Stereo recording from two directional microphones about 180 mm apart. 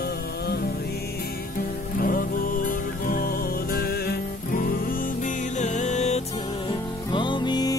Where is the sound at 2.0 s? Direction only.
50° left (ahead or behind).